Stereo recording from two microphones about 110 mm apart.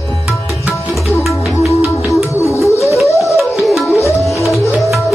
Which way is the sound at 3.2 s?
Centre (ahead or behind).